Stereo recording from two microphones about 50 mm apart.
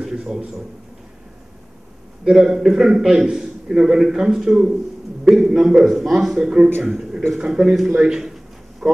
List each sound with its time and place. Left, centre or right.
0.0 s a man's voice: centre
2.2 s a man's voice: centre
5.9 s speech: centre
6.8 s speech: centre
7.3 s a man's voice: centre
8.0 s a sound: centre